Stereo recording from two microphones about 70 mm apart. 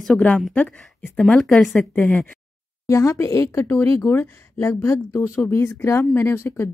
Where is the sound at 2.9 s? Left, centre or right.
Left.